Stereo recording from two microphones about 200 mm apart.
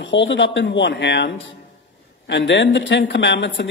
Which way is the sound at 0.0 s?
65° left (ahead or behind).